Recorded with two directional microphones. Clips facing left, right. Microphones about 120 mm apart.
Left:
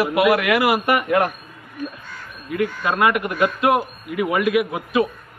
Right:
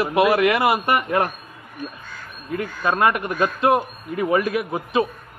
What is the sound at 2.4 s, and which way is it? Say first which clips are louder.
A man's voice: left 2 dB; 35° right (ahead or behind).